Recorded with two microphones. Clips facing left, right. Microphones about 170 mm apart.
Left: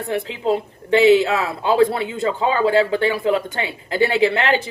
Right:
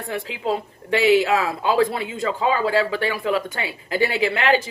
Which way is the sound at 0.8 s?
25° left (ahead or behind).